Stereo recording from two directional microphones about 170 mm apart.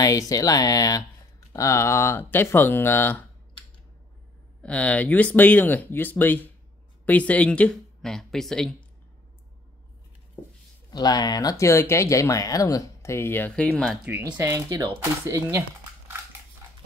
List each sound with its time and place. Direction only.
0.0 s speech: 20° left (ahead or behind)
4.6 s speech: 5° left (ahead or behind)
10.9 s speech: 25° left (ahead or behind); by 13.9 s 5° left (ahead or behind)
14.0 s speech: 10° right (ahead or behind)